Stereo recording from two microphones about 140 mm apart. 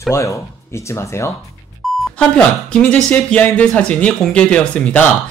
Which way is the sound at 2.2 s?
5° left (ahead or behind).